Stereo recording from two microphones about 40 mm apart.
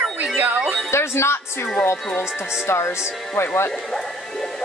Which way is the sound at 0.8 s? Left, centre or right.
Left.